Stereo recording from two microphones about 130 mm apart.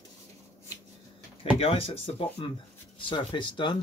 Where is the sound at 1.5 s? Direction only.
45° left (ahead or behind).